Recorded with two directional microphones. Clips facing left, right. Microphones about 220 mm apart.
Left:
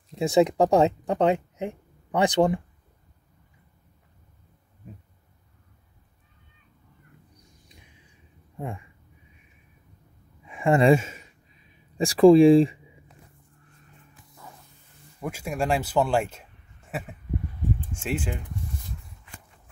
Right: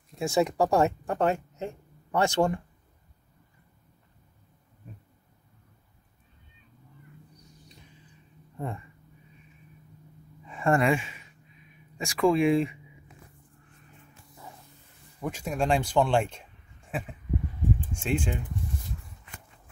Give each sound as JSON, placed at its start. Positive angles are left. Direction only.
{"t": 0.1, "sound": "speech", "side_deg": 20}
{"t": 8.5, "sound": "speech", "side_deg": 10}
{"t": 10.4, "sound": "a sound", "side_deg": 15}
{"t": 10.8, "sound": "speech", "side_deg": 40}
{"t": 15.1, "sound": "a man's voice", "side_deg": 10}
{"t": 18.0, "sound": "speech", "side_deg": 5}